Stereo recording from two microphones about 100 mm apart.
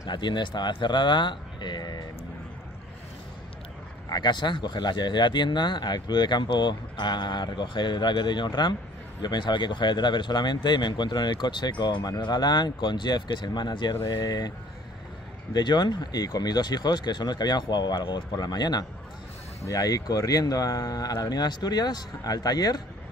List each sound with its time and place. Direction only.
0.1 s speech: 50° left (ahead or behind)
4.1 s speech: 45° left (ahead or behind)
15.5 s speech: 50° left (ahead or behind)